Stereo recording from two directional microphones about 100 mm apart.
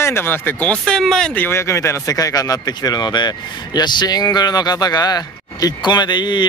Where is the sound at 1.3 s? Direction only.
20° left (ahead or behind).